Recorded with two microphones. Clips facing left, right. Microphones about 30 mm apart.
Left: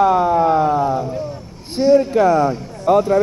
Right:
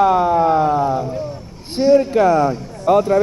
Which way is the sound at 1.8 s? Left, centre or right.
Centre.